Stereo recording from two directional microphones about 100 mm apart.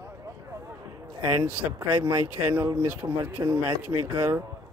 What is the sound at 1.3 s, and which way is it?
Speech, 30° right (ahead or behind).